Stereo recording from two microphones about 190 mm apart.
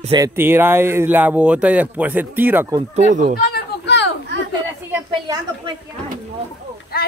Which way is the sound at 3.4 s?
60° left (ahead or behind).